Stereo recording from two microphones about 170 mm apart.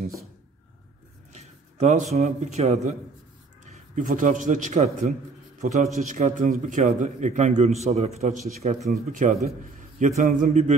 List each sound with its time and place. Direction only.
1.3 s a man's voice: 40° right (ahead or behind)